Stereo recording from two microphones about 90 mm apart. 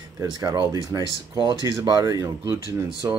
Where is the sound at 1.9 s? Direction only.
45° right (ahead or behind).